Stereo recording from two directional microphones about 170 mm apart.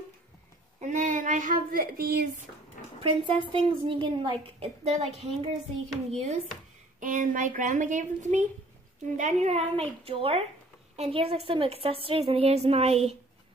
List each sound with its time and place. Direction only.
0.7 s speech: 45° right (ahead or behind)
3.0 s a woman's voice: 35° right (ahead or behind)
7.0 s a child's voice: 50° right (ahead or behind)